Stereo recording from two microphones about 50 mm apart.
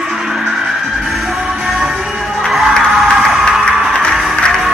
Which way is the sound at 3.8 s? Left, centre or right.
Centre.